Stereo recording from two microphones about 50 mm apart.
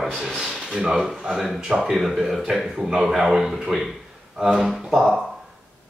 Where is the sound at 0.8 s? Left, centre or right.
Centre.